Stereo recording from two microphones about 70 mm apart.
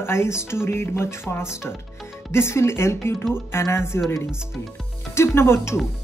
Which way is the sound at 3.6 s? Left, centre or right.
Left.